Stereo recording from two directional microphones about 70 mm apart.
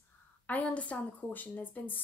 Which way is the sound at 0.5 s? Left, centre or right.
Left.